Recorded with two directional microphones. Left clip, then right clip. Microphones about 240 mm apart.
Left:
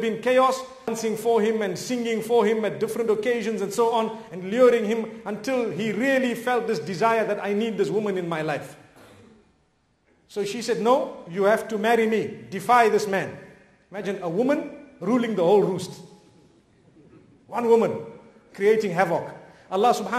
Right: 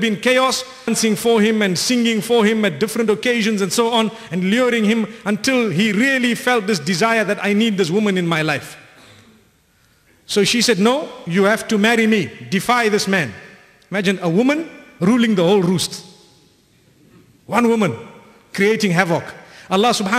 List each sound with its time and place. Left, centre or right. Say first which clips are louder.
0.0 s a man's voice: right 4 dB; right
10.2 s a man's voice: right 12 dB; right
17.5 s a man's voice: right 3 dB; right